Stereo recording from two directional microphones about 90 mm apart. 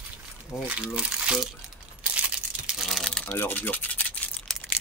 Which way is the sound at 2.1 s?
5° right (ahead or behind).